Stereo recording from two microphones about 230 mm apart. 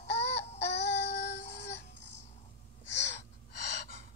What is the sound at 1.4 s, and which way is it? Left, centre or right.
Music, left.